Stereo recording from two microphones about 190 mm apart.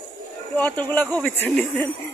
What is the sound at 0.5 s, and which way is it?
Speech, 10° left (ahead or behind).